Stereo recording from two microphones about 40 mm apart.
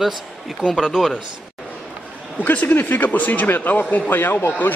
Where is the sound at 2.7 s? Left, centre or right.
Left.